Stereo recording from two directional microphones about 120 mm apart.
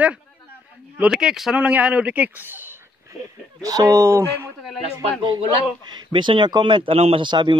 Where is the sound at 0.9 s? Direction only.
10° right (ahead or behind).